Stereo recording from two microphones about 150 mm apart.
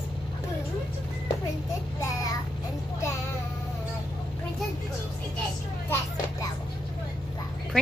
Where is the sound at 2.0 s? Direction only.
25° left (ahead or behind).